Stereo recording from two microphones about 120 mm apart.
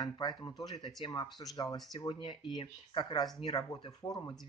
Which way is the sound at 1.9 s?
45° left (ahead or behind).